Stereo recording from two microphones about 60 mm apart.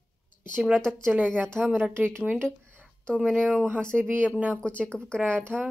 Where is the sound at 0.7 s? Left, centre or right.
Centre.